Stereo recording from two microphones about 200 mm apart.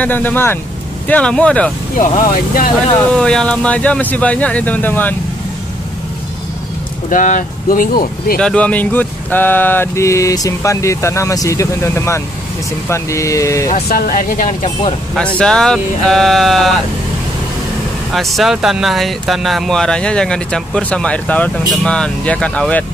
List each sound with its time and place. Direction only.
0.0 s speech: 10° left (ahead or behind)
2.0 s speech: 45° left (ahead or behind)
3.1 s speech: 5° left (ahead or behind)
7.1 s speech: 40° left (ahead or behind)
8.4 s speech: 5° left (ahead or behind)
13.8 s speech: 45° left (ahead or behind)
15.1 s speech: 5° left (ahead or behind)
18.1 s speech: centre (ahead or behind)